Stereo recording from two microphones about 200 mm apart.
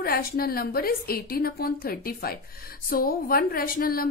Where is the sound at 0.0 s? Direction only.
45° left (ahead or behind).